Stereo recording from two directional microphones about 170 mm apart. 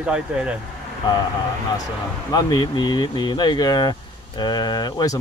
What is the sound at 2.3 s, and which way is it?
Speech, 25° left (ahead or behind).